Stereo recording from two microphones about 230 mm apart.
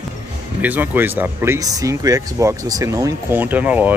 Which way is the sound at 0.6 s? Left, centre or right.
Centre.